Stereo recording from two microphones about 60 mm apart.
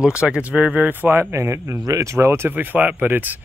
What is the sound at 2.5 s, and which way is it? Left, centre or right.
Speech, right.